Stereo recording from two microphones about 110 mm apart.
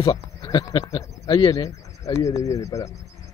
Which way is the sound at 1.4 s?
50° left (ahead or behind).